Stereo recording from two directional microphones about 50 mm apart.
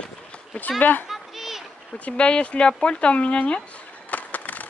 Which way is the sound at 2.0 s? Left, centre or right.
Left.